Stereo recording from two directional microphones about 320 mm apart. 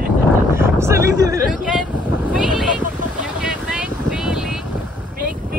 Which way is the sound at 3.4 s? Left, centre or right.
Centre.